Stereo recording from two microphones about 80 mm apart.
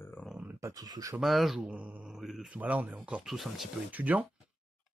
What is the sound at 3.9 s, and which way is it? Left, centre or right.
Speech, centre.